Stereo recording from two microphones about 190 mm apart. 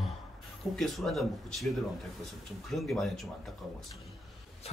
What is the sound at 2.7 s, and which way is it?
Speech, centre (ahead or behind).